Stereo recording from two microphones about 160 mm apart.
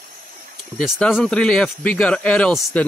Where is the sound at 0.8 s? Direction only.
Centre (ahead or behind).